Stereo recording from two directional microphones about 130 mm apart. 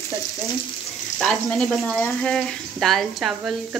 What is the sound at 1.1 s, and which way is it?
Speech, 5° left (ahead or behind).